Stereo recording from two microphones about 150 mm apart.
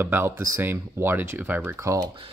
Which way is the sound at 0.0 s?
15° right (ahead or behind).